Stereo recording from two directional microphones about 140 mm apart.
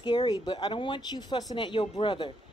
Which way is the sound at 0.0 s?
30° left (ahead or behind).